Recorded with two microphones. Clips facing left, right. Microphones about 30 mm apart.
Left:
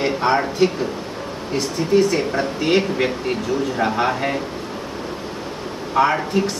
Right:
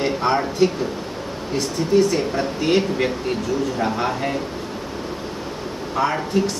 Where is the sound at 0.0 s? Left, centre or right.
Centre.